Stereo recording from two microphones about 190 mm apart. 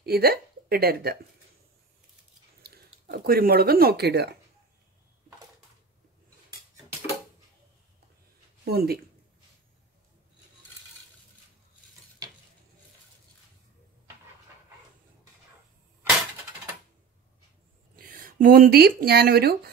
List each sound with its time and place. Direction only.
0.0 s speech: 55° right (ahead or behind)
2.6 s speech: 55° right (ahead or behind)
8.6 s speech: 55° right (ahead or behind)
17.9 s speech: 45° right (ahead or behind)